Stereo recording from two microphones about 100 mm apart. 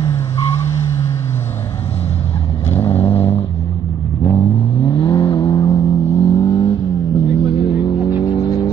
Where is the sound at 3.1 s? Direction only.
80° left.